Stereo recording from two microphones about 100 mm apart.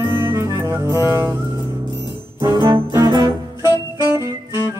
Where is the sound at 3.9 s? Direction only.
25° right (ahead or behind).